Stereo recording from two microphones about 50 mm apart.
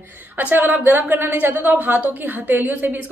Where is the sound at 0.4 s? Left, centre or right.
Right.